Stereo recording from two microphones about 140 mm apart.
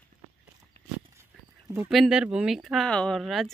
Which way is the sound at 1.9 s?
5° right (ahead or behind).